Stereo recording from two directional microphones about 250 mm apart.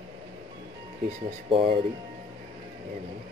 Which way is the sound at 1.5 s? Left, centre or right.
Right.